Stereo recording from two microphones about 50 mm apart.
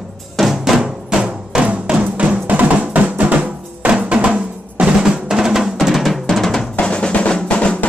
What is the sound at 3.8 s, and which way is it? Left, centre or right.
Drum, right.